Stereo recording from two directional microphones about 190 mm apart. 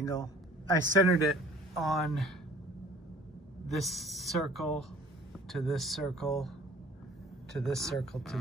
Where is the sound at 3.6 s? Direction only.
Centre (ahead or behind).